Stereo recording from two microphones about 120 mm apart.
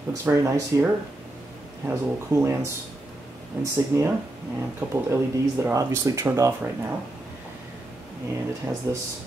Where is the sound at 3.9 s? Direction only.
20° right (ahead or behind).